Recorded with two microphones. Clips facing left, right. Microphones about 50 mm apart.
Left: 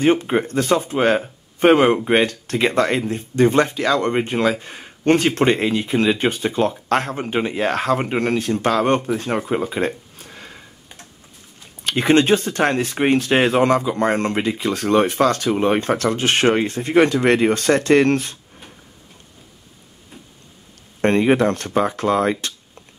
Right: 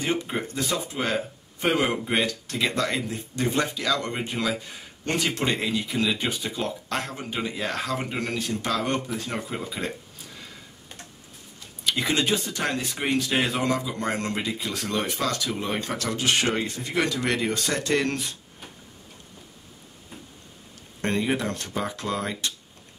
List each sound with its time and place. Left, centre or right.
0.0 s speech: left
9.5 s a sound: left
11.8 s speech: left
21.0 s speech: left